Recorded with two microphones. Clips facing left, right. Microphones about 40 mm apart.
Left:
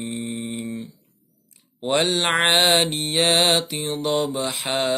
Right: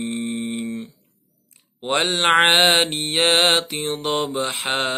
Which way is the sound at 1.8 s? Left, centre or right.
Right.